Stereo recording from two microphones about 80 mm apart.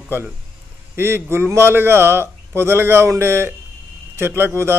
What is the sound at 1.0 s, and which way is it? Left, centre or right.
A man's voice, right.